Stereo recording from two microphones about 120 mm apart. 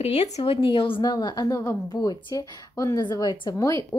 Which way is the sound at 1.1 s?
35° left (ahead or behind).